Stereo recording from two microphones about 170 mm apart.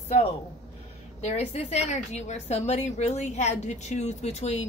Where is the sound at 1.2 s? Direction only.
40° left (ahead or behind).